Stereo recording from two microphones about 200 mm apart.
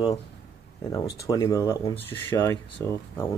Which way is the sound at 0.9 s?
15° left (ahead or behind).